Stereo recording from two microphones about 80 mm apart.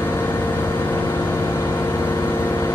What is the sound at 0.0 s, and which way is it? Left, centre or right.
Vehicle, left.